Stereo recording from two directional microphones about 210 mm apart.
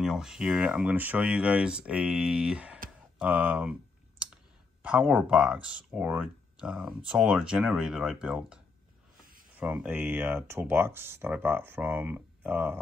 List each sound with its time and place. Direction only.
0.0 s speech: centre (ahead or behind)
4.8 s speech: 5° right (ahead or behind)
9.6 s speech: 5° right (ahead or behind)